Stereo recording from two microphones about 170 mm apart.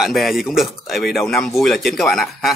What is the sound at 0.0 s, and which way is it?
Speech, centre (ahead or behind).